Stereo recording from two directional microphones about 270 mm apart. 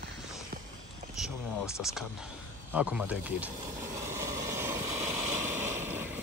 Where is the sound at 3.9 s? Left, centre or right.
Centre.